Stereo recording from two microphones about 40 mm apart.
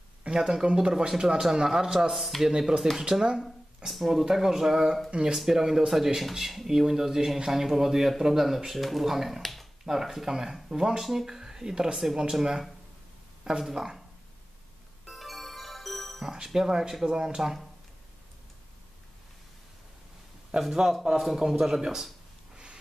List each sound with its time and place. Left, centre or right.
0.3 s speech: centre
3.0 s speech: centre
3.9 s speech: centre
9.8 s speech: centre
15.0 s music: centre
16.3 s speech: centre
20.5 s speech: centre